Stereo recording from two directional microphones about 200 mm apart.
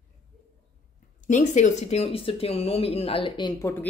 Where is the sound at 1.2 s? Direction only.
40° left (ahead or behind); by 3.7 s 20° left (ahead or behind).